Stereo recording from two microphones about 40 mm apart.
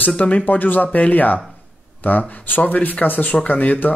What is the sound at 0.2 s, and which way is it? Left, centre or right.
Speech, left.